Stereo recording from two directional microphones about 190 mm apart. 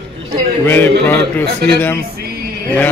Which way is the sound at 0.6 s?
10° left (ahead or behind).